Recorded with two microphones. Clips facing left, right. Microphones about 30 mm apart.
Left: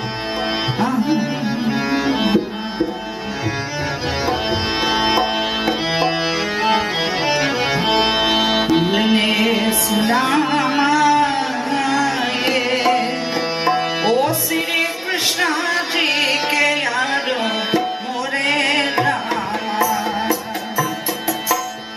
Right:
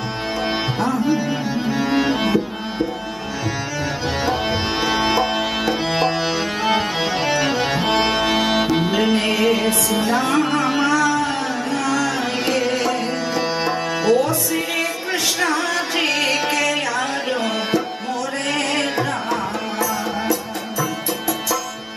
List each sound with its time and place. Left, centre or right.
2.1 s music: left
4.3 s music: left
9.8 s music: left
10.5 s carnatic music: left
15.4 s music: left